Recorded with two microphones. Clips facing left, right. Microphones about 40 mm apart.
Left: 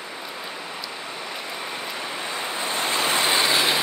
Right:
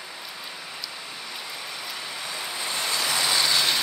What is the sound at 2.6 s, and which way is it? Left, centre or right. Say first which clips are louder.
Vehicle: left 4 dB; left.